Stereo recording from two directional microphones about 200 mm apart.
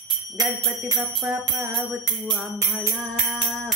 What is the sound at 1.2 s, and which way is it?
Jingle bell, centre (ahead or behind).